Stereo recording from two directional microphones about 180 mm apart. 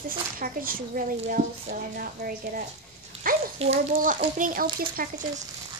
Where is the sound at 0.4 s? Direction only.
50° right (ahead or behind).